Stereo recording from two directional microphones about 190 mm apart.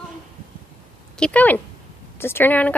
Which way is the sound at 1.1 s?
5° left (ahead or behind).